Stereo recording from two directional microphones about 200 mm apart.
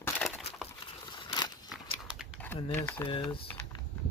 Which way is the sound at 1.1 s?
20° left (ahead or behind).